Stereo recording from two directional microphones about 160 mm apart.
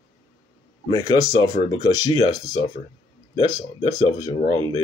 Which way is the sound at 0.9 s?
25° left (ahead or behind).